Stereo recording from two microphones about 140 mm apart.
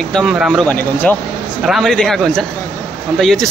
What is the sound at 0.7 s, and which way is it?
Speech, 10° left (ahead or behind).